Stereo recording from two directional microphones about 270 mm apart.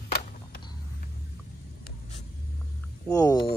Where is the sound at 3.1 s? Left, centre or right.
Centre.